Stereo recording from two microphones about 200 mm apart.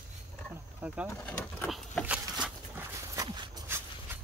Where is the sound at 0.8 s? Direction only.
5° right (ahead or behind).